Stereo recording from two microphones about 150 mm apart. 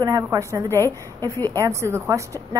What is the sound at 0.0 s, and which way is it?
A woman's voice, 25° right (ahead or behind).